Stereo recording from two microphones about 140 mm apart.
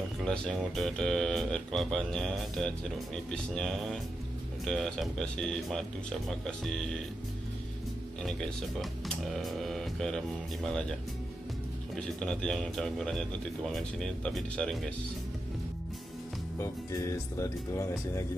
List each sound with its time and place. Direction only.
0.2 s speech: centre (ahead or behind)
8.2 s speech: centre (ahead or behind)
16.5 s speech: 20° left (ahead or behind)